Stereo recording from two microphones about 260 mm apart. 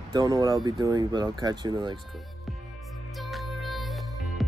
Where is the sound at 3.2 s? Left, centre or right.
Centre.